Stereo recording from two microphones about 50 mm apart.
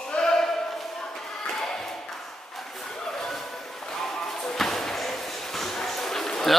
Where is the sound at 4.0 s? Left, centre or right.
Centre.